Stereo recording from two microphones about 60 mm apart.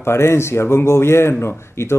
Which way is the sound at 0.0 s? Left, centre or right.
Left.